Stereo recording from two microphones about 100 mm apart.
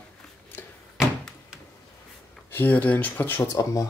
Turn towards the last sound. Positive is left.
turn(degrees=35)  # may be behind; listen again after turning